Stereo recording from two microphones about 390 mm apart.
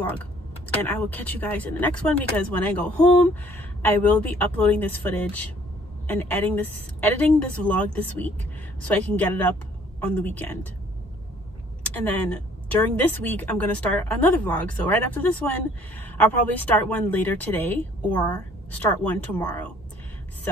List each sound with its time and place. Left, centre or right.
0.8 s speech: centre
11.9 s speech: centre